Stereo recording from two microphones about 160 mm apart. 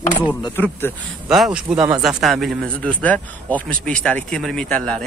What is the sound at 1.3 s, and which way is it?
Speech, 5° right (ahead or behind).